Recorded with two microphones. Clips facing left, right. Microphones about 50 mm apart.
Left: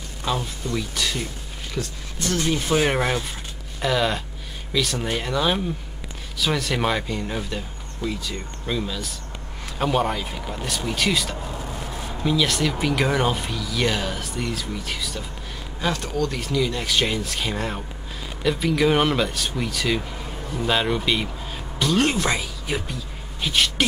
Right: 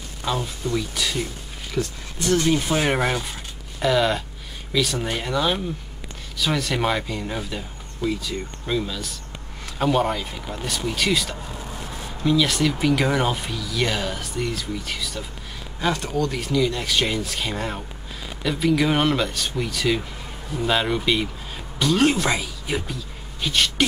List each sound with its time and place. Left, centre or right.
0.2 s speech: centre
2.2 s speech: centre
2.5 s speech: centre